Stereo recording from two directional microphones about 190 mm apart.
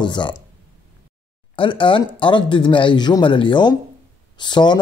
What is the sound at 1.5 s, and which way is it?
Speech, 25° left (ahead or behind).